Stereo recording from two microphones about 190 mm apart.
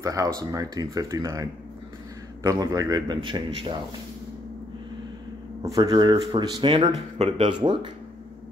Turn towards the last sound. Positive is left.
turn(degrees=-25)  # may be behind; listen again after turning